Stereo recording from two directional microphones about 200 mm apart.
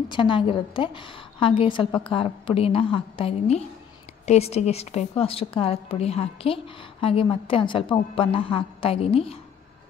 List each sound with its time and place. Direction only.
0.1 s a woman's voice: 25° left (ahead or behind)